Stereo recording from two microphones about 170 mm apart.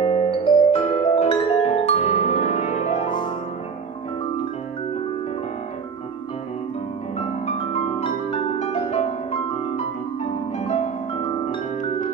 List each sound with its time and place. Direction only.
0.0 s music: 35° left (ahead or behind)
7.2 s music: 40° left (ahead or behind)